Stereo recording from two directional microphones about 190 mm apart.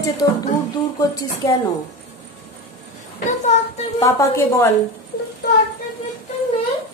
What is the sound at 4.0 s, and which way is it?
Speech, 15° left (ahead or behind).